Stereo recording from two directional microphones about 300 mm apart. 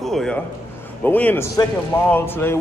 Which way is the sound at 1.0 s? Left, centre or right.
Centre.